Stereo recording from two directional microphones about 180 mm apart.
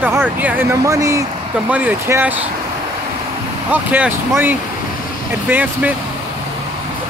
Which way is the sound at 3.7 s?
10° right (ahead or behind).